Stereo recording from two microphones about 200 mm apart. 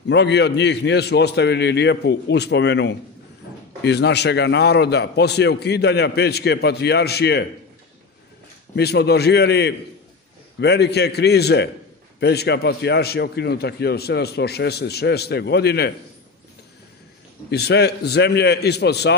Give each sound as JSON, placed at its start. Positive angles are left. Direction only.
{"t": 0.1, "sound": "a man's voice", "side_deg": 60}
{"t": 8.7, "sound": "a man's voice", "side_deg": 55}
{"t": 17.5, "sound": "a man's voice", "side_deg": 55}